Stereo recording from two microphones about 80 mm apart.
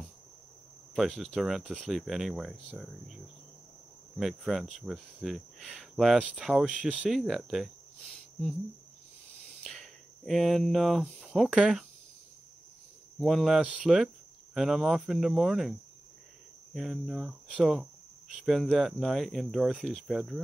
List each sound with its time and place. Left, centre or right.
0.9 s speech: centre
4.2 s speech: centre
6.2 s speech: centre
7.1 s speech: centre
9.6 s a sound: centre
11.5 s speech: centre
13.2 s speech: centre
16.7 s speech: centre